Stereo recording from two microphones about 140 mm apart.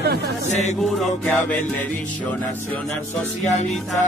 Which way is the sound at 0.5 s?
55° left (ahead or behind).